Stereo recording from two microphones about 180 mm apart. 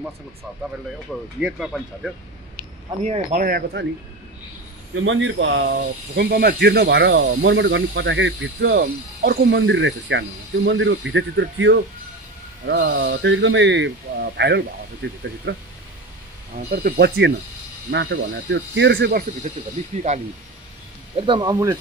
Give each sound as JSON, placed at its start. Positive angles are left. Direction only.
{"t": 1.4, "sound": "speech", "side_deg": 0}
{"t": 3.0, "sound": "speech", "side_deg": -40}
{"t": 3.4, "sound": "speech", "side_deg": -60}
{"t": 4.9, "sound": "speech", "side_deg": -90}
{"t": 12.7, "sound": "speech", "side_deg": -60}
{"t": 15.5, "sound": "speech", "side_deg": -90}
{"t": 16.5, "sound": "speech", "side_deg": -60}
{"t": 17.9, "sound": "speech", "side_deg": -80}
{"t": 21.2, "sound": "speech", "side_deg": -25}